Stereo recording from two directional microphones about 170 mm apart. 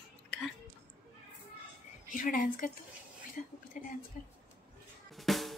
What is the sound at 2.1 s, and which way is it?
Speech, 55° left (ahead or behind).